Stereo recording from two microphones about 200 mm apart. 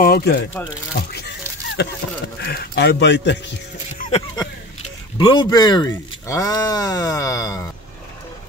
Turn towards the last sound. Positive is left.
turn(degrees=15)  # may be behind; listen again after turning